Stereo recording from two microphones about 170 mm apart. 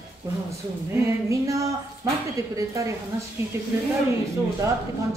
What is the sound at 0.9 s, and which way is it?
A woman's voice, 20° right (ahead or behind).